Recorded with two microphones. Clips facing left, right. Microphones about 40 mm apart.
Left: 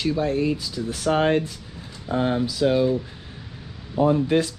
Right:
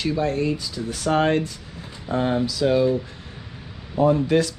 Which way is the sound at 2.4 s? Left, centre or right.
Left.